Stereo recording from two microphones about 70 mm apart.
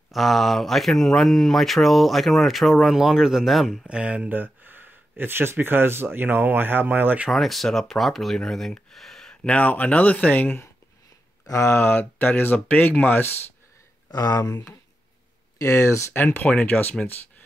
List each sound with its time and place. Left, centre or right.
0.1 s speech: centre
3.8 s speech: centre
7.2 s speech: centre
9.3 s speech: centre
11.4 s speech: left
14.1 s speech: left
15.6 s speech: left
16.1 s speech: left